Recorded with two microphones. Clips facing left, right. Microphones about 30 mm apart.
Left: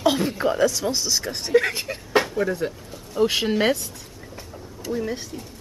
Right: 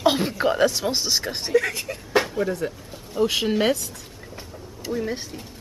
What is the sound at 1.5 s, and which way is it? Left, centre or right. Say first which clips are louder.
Speech: left 2 dB; left.